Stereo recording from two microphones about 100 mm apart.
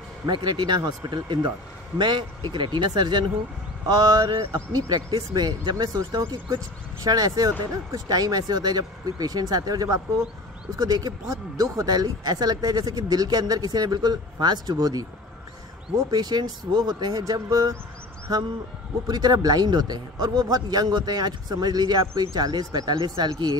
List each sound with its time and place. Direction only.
0.3 s a man's voice: 50° right (ahead or behind)
16.1 s speech: 45° right (ahead or behind)
19.0 s a man's voice: 45° right (ahead or behind)